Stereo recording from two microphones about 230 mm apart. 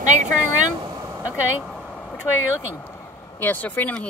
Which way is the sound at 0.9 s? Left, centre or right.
Centre.